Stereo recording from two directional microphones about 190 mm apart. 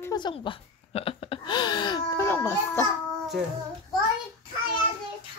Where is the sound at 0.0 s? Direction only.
20° left (ahead or behind).